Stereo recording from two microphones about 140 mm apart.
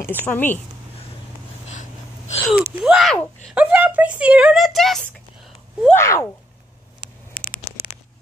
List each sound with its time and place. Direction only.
0.3 s speech: 15° left (ahead or behind)
1.7 s gasp: 55° left (ahead or behind)
2.5 s speech: 5° right (ahead or behind)
5.9 s speech: 20° left (ahead or behind)